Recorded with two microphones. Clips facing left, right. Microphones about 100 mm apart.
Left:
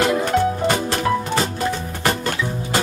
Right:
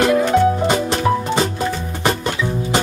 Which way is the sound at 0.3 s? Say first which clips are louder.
Right 3 dB; 20° right (ahead or behind).